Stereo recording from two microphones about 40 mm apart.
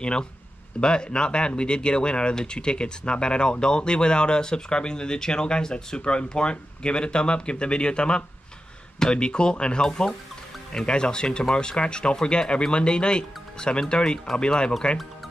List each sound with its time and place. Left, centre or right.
0.0 s speech: left